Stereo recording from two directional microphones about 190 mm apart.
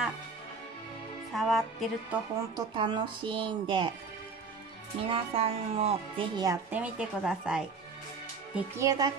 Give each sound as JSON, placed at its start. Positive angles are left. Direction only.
{"t": 1.3, "sound": "speech", "side_deg": 0}
{"t": 2.5, "sound": "speech", "side_deg": -25}
{"t": 5.0, "sound": "speech", "side_deg": -30}
{"t": 8.5, "sound": "speech", "side_deg": -15}